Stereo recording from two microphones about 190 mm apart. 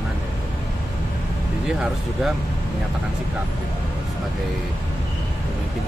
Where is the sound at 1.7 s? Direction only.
5° right (ahead or behind).